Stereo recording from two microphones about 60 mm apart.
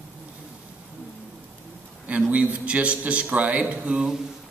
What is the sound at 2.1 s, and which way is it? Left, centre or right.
A man's voice, right.